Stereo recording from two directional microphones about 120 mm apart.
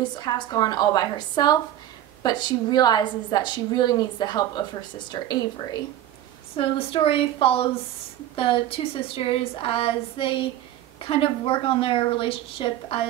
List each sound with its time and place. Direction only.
0.0 s a woman's voice: 35° left (ahead or behind)
6.5 s a woman's voice: 50° left (ahead or behind)